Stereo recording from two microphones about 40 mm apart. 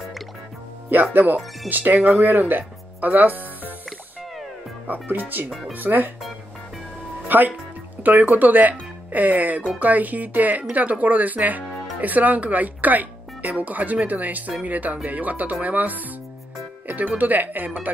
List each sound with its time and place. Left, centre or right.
1.1 s speech: right
4.8 s speech: right
7.2 s speech: right
16.8 s music: right
17.2 s speech: right